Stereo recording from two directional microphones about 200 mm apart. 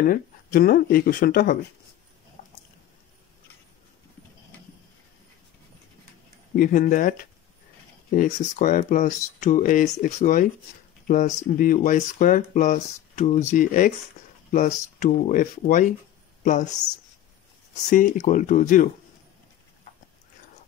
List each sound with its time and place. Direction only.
0.0 s speech: 45° left (ahead or behind)
2.4 s a sound: 40° left (ahead or behind)
6.5 s speech: 40° left (ahead or behind)
17.8 s speech: 40° left (ahead or behind)